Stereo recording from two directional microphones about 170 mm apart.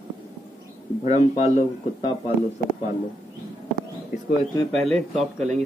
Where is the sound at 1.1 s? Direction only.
40° left (ahead or behind).